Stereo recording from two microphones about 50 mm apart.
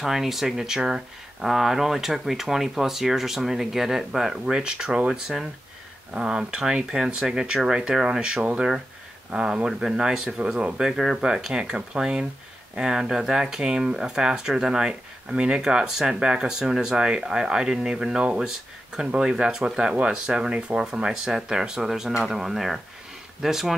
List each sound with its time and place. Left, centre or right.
0.0 s speech: centre